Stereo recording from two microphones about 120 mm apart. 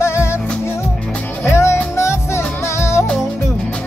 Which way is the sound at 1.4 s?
20° left (ahead or behind).